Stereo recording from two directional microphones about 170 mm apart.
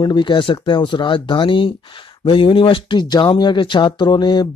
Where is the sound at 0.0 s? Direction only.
25° left (ahead or behind).